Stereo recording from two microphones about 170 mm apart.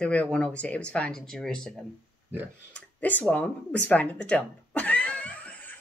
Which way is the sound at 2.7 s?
10° left (ahead or behind).